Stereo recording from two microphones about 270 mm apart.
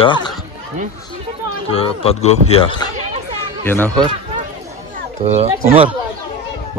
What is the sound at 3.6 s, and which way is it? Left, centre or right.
Speech, centre.